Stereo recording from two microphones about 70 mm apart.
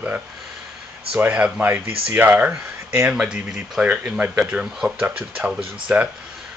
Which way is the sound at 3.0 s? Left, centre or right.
Centre.